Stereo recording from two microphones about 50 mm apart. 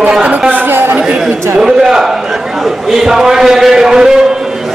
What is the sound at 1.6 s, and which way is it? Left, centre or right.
A man's voice, centre.